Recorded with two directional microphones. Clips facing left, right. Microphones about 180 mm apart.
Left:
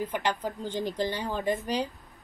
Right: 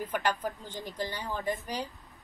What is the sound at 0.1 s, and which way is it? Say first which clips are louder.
Speech: left 1 dB; 20° left (ahead or behind).